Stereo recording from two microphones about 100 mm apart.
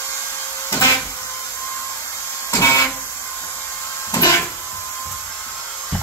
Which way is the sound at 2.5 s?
30° left (ahead or behind).